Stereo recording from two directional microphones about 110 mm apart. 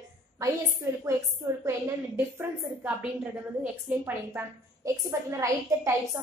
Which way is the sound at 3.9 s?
10° right (ahead or behind).